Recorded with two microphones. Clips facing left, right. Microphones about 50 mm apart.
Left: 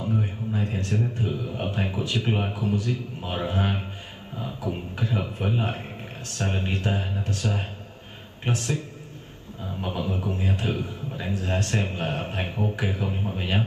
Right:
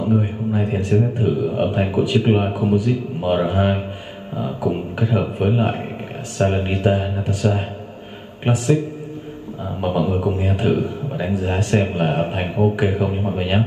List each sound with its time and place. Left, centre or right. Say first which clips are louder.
0.0 s a man's voice: right 8 dB; right
1.2 s a man's voice: right 10 dB; right
4.4 s a man's voice: right 9 dB; right
8.5 s speech: right 10 dB; centre
9.8 s a man's voice: right 10 dB; right